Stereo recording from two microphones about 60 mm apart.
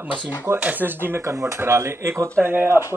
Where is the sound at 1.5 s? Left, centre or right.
Right.